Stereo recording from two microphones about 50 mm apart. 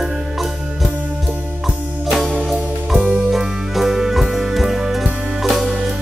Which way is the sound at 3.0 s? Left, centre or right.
Right.